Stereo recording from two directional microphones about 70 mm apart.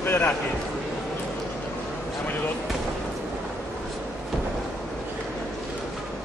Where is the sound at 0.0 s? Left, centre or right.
Left.